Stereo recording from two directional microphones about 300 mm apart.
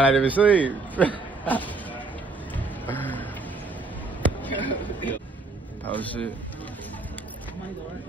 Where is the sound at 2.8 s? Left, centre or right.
Centre.